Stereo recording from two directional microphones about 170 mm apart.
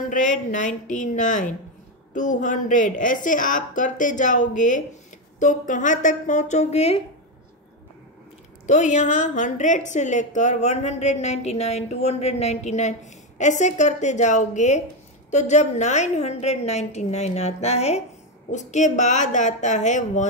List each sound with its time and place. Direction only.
0.1 s a woman's voice: 50° left (ahead or behind)
8.6 s a woman's voice: 45° left (ahead or behind)